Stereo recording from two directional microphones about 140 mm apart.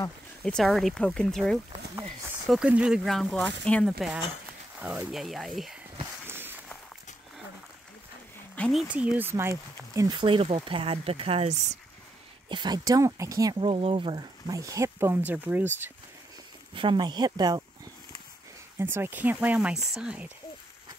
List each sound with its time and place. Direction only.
0.4 s speech: 5° left (ahead or behind)
4.7 s speech: 5° right (ahead or behind)
6.2 s walk: 15° right (ahead or behind)
8.5 s speech: centre (ahead or behind)
8.8 s speech: 10° right (ahead or behind)
9.9 s speech: 30° right (ahead or behind); by 11.8 s 55° right (ahead or behind)
12.4 s speech: 35° right (ahead or behind)
13.6 s speech: 40° right (ahead or behind)
14.5 s speech: 25° right (ahead or behind)
16.7 s speech: 35° right (ahead or behind)
18.8 s speech: 15° right (ahead or behind)